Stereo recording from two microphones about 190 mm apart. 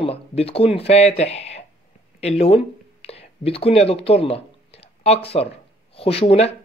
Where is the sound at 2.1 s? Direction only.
35° left (ahead or behind).